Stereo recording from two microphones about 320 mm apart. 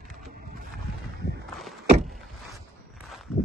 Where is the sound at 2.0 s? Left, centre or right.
Centre.